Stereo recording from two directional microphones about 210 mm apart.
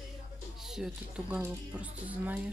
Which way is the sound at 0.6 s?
Centre (ahead or behind).